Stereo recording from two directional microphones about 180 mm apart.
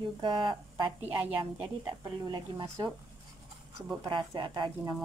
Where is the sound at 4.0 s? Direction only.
20° right (ahead or behind).